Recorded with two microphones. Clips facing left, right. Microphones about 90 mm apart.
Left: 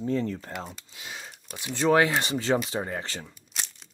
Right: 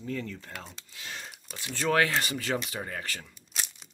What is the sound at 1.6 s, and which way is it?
Speech, 20° left (ahead or behind).